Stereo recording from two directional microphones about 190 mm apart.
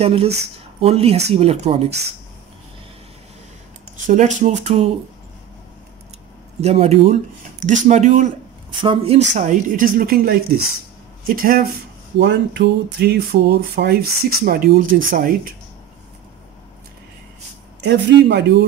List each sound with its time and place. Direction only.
0.0 s speech: 30° right (ahead or behind)
3.9 s speech: 40° right (ahead or behind)
6.6 s speech: 35° right (ahead or behind)
9.3 s speech: 45° right (ahead or behind)
12.2 s speech: 65° right (ahead or behind)
17.7 s speech: 65° right (ahead or behind)